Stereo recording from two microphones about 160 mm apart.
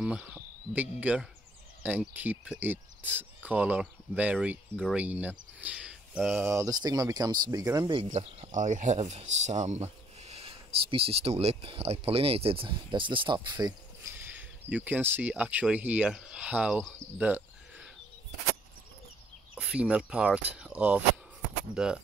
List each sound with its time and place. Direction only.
0.0 s speech: 5° right (ahead or behind)
6.5 s speech: 20° right (ahead or behind)
7.9 s speech: 35° right (ahead or behind)
8.5 s speech: 50° right (ahead or behind); by 14.1 s 25° right (ahead or behind)
14.7 s speech: 10° right (ahead or behind)
19.5 s speech: 5° right (ahead or behind)